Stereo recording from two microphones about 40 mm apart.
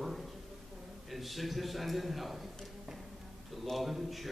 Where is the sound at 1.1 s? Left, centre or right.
Centre.